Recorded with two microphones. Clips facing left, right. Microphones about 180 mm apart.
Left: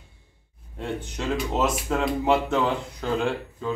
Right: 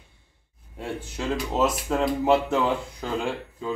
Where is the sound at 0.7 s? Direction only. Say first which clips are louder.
Left 1 dB; 5° right (ahead or behind).